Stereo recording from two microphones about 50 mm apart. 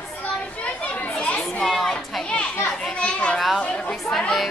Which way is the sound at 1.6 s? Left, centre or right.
Centre.